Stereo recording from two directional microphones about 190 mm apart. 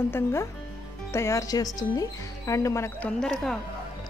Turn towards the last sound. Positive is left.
turn(degrees=0)  # may be behind; listen again after turning